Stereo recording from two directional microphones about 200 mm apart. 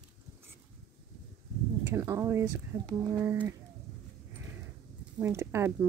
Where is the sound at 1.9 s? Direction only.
15° right (ahead or behind).